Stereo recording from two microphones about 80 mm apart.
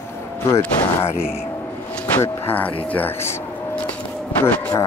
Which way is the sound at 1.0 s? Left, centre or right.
Left.